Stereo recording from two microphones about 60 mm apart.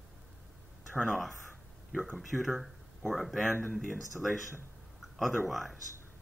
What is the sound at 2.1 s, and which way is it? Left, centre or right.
Speech, centre.